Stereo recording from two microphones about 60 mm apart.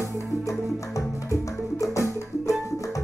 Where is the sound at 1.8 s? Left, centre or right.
Left.